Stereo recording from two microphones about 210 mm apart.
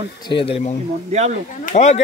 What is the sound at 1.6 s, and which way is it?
Speech, 35° left (ahead or behind).